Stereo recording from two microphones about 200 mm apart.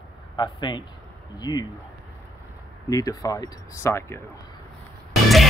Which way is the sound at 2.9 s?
20° left (ahead or behind).